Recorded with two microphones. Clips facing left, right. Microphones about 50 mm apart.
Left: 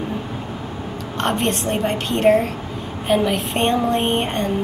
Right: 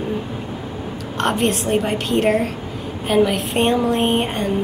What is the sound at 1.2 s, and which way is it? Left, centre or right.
A woman's voice, centre.